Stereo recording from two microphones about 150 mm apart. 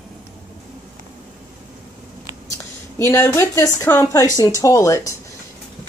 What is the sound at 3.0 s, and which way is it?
Speech, 15° left (ahead or behind).